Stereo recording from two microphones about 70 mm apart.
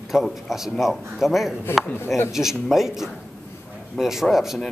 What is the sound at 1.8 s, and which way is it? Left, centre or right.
Speech, left.